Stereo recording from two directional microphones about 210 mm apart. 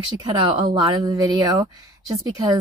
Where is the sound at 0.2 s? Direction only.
20° right (ahead or behind).